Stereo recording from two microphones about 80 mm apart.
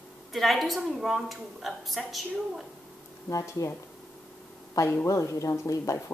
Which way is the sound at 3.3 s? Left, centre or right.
Left.